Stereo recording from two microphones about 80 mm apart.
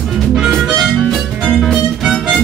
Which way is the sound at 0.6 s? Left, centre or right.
Centre.